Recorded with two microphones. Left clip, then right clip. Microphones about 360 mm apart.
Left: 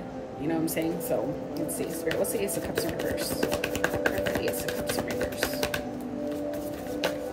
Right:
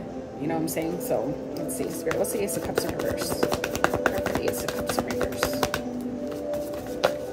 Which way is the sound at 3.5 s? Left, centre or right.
Centre.